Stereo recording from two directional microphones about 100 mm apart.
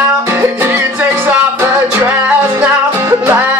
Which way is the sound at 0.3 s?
20° right (ahead or behind).